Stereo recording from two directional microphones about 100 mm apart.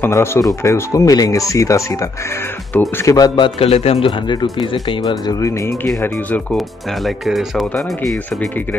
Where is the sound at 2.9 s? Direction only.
35° left (ahead or behind).